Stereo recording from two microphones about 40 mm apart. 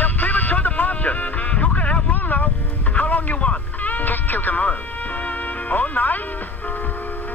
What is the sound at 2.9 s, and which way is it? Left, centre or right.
Music, left.